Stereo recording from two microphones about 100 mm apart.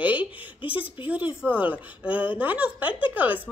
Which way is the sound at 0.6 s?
60° left (ahead or behind).